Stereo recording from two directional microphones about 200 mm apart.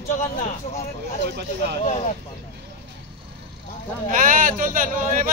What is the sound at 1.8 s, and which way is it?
Speech, 35° left (ahead or behind).